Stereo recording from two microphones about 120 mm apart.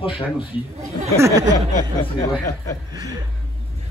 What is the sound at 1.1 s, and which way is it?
Speech, 25° right (ahead or behind).